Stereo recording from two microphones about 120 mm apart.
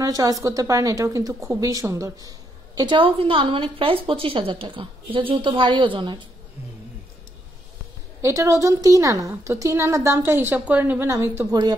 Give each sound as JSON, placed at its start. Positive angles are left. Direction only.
{"t": 0.0, "sound": "a woman's voice", "side_deg": -30}
{"t": 8.2, "sound": "a woman's voice", "side_deg": -25}